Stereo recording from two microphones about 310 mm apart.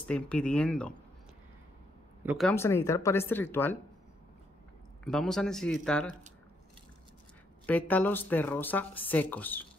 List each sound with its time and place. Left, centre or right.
0.0 s a woman's voice: centre
2.2 s speech: centre
5.0 s a woman's voice: centre
7.6 s a woman's voice: centre